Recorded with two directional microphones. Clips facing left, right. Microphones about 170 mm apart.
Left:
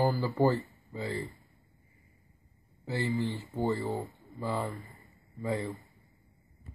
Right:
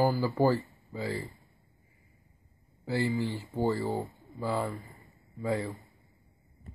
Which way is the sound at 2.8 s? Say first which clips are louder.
Right 2 dB; 10° right (ahead or behind).